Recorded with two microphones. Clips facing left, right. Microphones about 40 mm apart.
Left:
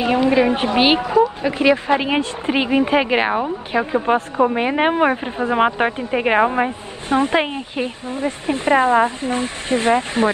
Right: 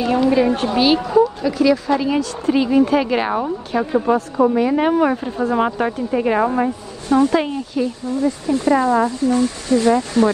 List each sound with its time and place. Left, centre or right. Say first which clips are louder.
0.0 s a woman's voice: even; left
1.0 s a sound: right 1 dB; left
1.4 s speech: even; left